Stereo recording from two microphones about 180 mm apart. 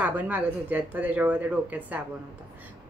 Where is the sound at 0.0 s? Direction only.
10° right (ahead or behind).